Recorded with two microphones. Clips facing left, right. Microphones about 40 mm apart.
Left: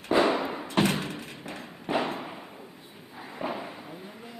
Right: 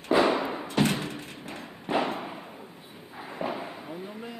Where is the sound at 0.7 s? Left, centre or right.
Left.